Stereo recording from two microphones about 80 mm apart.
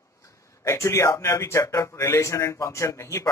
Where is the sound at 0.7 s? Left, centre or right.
Left.